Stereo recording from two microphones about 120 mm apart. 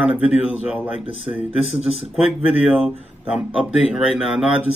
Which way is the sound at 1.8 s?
55° right (ahead or behind).